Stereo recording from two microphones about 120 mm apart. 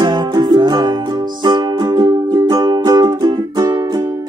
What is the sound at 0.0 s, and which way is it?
Music, 35° right (ahead or behind).